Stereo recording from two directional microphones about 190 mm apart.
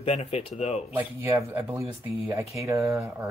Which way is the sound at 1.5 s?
10° right (ahead or behind).